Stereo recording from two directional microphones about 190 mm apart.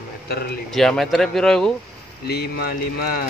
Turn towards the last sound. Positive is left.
turn(degrees=50)  # may be behind; listen again after turning